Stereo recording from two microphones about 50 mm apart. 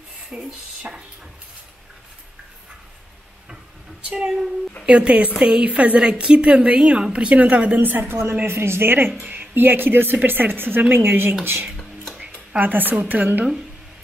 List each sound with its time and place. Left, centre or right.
0.5 s speech: centre
4.0 s a woman's voice: centre
5.7 s a woman's voice: right
8.1 s speech: right
9.2 s speech: right
12.2 s a sound: right
13.1 s speech: right